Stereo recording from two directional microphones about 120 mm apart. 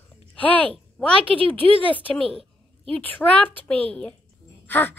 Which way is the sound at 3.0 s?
15° left (ahead or behind).